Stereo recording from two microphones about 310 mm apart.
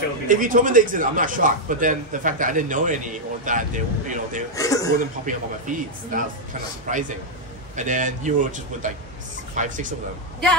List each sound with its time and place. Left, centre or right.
0.3 s a man's voice: right
4.6 s chuckle: centre
4.9 s a man's voice: right